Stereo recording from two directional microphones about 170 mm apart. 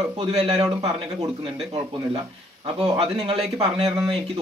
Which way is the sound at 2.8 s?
35° right (ahead or behind).